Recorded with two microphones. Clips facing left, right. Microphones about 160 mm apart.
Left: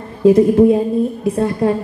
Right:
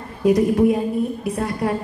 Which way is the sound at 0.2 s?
30° left (ahead or behind).